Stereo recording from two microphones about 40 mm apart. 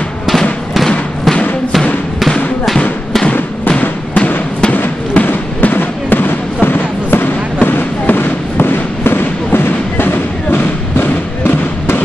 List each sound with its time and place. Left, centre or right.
5.1 s fireworks: left